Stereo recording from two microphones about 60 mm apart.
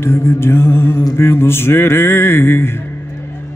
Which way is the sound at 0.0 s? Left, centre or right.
Left.